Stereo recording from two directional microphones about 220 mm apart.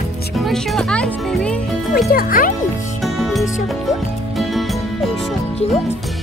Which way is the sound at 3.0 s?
Centre (ahead or behind).